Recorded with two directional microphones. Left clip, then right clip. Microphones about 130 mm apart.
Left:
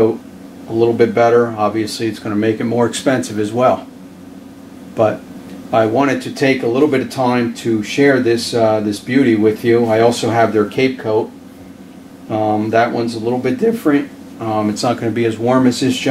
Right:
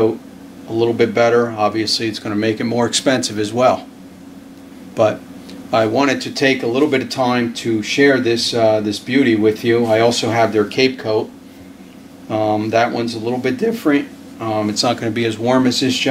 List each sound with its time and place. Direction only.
0.7 s speech: 20° right (ahead or behind)
5.7 s speech: 25° right (ahead or behind)
12.3 s speech: 25° right (ahead or behind)